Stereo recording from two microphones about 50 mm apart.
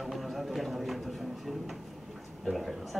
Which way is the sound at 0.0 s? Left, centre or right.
Centre.